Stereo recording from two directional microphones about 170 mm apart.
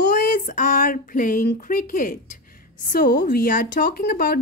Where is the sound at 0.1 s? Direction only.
55° left (ahead or behind).